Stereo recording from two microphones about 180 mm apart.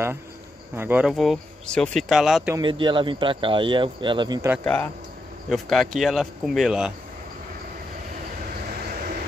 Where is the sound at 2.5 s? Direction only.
25° right (ahead or behind).